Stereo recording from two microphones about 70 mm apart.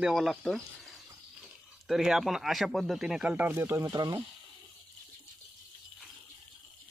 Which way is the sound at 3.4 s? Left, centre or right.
Right.